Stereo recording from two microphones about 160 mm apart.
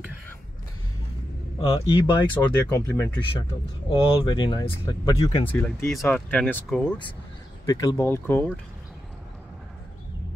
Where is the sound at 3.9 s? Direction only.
30° left (ahead or behind).